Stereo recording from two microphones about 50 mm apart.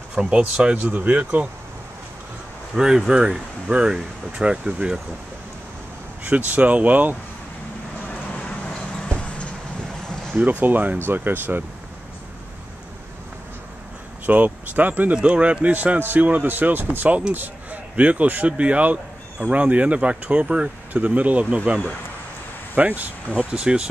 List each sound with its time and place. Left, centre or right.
0.1 s speech: centre
0.8 s speech: right
2.7 s speech: centre
6.2 s speech: right
8.5 s a sound: centre
10.3 s speech: right
10.6 s speech: right
14.2 s speech: right
15.2 s a man's voice: right
22.8 s speech: right
23.5 s speech: centre